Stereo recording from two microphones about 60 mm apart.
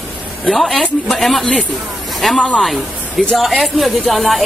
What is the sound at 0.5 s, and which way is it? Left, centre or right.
Speech, centre.